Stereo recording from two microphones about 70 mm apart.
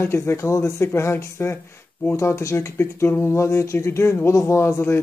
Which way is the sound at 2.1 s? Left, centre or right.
Left.